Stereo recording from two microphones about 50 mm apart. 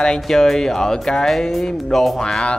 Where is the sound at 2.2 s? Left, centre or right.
Centre.